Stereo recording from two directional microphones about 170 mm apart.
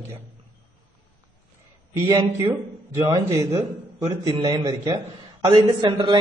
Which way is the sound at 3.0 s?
20° right (ahead or behind).